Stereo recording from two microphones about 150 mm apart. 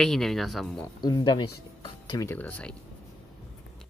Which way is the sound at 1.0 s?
30° left (ahead or behind).